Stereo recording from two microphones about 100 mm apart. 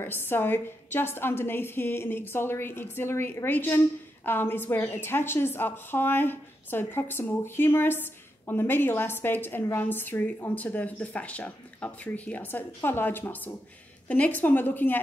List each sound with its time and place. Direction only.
0.0 s a woman's voice: 20° left (ahead or behind)